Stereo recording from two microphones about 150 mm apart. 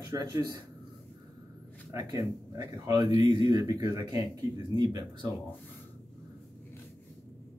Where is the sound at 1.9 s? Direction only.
25° right (ahead or behind).